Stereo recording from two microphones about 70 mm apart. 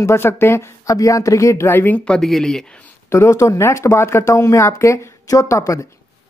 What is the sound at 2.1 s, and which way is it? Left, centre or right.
Speech, centre.